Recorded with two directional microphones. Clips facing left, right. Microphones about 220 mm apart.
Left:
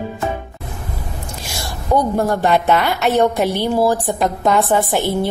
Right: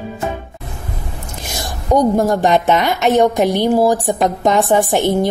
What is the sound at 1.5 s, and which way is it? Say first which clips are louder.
A woman's voice: right 3 dB; 15° right (ahead or behind).